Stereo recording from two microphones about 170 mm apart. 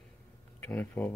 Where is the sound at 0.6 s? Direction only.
10° left (ahead or behind).